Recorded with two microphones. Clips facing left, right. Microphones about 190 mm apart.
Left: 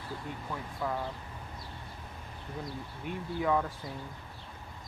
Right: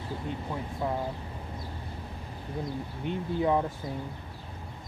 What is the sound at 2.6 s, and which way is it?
Speech, 25° right (ahead or behind).